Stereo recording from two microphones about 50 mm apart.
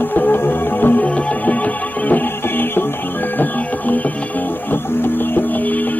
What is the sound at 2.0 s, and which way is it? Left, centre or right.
Music, left.